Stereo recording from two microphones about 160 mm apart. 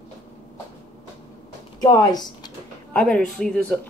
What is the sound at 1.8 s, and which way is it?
Speech, 25° left (ahead or behind).